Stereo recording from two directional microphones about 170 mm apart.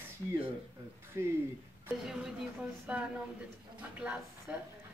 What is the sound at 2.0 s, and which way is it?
A woman's voice, 5° right (ahead or behind).